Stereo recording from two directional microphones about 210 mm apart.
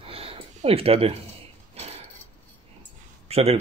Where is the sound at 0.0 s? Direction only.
25° right (ahead or behind).